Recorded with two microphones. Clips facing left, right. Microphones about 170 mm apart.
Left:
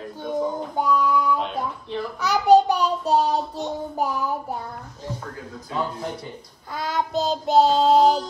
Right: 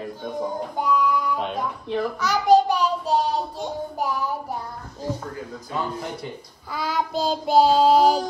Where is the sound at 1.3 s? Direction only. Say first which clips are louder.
Even; 50° right (ahead or behind).